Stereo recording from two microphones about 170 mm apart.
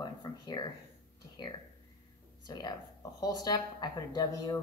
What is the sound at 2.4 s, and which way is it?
Speech, 25° left (ahead or behind).